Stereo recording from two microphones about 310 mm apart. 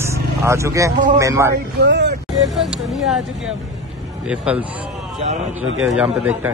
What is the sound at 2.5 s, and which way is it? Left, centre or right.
A man's voice, centre.